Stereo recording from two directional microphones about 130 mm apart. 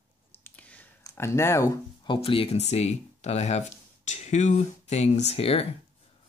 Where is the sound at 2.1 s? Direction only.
45° left (ahead or behind).